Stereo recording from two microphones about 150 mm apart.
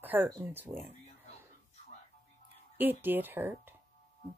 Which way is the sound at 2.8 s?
15° right (ahead or behind).